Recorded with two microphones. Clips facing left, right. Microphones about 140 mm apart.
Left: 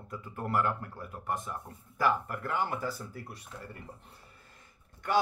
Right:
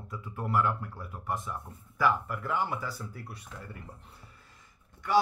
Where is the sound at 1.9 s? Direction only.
50° left (ahead or behind).